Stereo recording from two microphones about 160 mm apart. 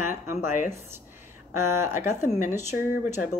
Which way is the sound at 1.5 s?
15° right (ahead or behind).